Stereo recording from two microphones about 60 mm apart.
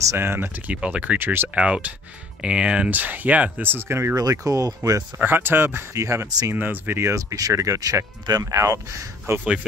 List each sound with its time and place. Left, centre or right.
0.2 s speech: right
0.7 s speech: centre
1.1 s speech: right
1.5 s speech: centre
2.9 s speech: right
3.5 s speech: right
4.1 s speech: right
5.2 s speech: right
5.9 s speech: right
6.5 s speech: right
7.0 s speech: right